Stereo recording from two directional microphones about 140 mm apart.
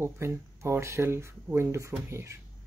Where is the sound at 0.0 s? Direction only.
20° right (ahead or behind).